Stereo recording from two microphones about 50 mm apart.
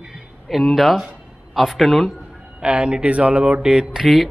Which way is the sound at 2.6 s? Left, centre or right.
Centre.